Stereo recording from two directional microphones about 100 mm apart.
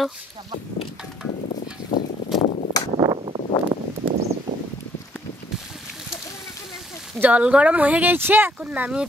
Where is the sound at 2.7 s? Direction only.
40° left (ahead or behind).